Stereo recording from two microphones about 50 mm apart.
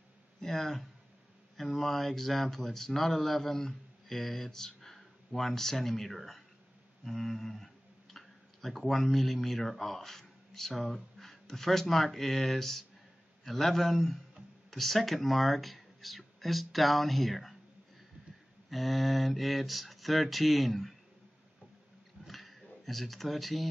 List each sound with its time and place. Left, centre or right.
0.4 s speech: centre
18.7 s speech: centre
22.2 s a sound: centre